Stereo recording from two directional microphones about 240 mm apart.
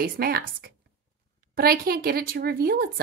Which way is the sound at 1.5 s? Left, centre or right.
Right.